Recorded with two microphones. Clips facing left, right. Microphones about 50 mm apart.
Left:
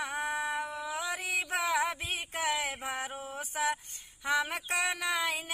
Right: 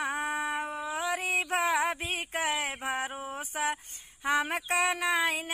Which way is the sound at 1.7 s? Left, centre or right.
Centre.